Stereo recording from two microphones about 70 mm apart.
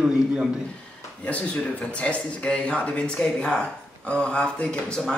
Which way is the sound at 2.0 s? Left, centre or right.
Centre.